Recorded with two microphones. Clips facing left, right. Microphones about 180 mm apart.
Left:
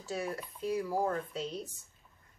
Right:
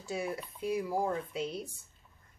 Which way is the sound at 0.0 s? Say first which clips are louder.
Right 1 dB; 10° right (ahead or behind).